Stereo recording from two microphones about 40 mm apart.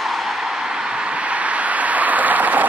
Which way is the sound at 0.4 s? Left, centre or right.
Centre.